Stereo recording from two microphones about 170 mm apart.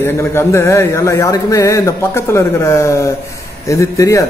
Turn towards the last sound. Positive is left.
turn(degrees=20)  # may be behind; listen again after turning